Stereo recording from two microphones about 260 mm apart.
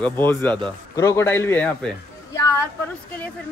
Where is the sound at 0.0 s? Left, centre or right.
Centre.